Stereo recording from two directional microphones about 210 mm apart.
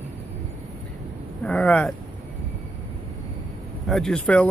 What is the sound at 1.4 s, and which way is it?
Speech, 5° left (ahead or behind).